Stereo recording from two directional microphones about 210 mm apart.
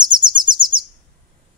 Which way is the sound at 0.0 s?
20° right (ahead or behind).